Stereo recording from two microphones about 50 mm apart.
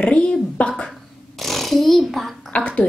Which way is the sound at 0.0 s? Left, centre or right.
Left.